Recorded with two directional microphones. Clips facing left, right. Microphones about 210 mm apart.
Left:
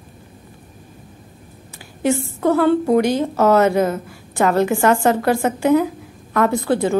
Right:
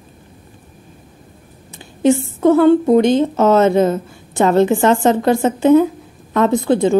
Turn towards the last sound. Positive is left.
turn(degrees=-20)  # may be behind; listen again after turning